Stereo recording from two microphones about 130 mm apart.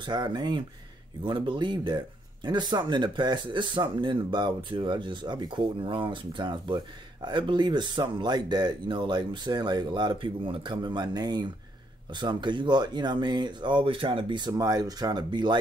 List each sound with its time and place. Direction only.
0.0 s speech: 35° right (ahead or behind)